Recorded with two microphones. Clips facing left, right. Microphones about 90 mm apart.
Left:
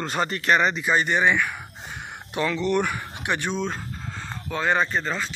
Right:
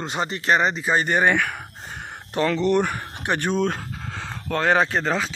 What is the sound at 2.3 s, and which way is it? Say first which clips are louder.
Speech: right 3 dB; 40° right (ahead or behind).